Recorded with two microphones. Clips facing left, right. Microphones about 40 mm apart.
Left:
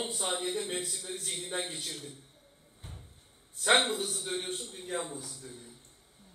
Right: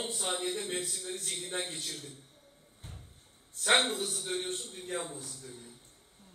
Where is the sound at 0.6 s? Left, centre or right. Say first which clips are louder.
Even; left.